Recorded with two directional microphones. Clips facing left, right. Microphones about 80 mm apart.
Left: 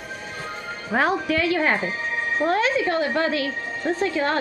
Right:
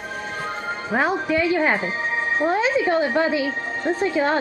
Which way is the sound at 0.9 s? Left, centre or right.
Centre.